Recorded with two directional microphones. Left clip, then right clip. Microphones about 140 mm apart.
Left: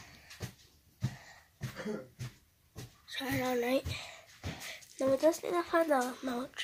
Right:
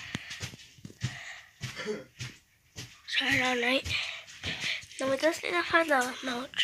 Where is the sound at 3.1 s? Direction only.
20° left (ahead or behind).